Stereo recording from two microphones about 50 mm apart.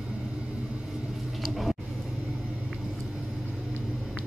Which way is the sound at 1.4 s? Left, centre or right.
Centre.